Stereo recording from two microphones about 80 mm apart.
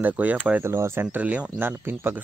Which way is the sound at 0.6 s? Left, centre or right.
Right.